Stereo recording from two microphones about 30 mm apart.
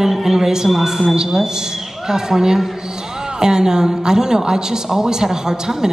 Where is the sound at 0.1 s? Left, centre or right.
Centre.